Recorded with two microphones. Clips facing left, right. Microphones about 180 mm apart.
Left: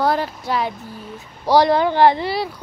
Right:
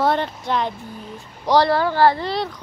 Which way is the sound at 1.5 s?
15° left (ahead or behind).